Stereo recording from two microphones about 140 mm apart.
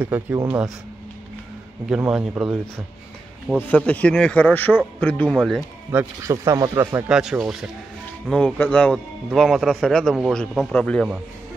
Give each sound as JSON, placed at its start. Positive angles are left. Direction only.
{"t": 0.0, "sound": "speech", "side_deg": -15}
{"t": 1.9, "sound": "speech", "side_deg": -5}
{"t": 3.6, "sound": "a man's voice", "side_deg": 10}
{"t": 5.3, "sound": "speech", "side_deg": 0}
{"t": 5.9, "sound": "speech", "side_deg": -20}
{"t": 7.0, "sound": "speech", "side_deg": -5}
{"t": 8.3, "sound": "a man's voice", "side_deg": 5}